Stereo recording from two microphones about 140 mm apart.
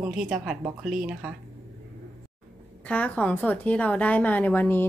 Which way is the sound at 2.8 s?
10° left (ahead or behind).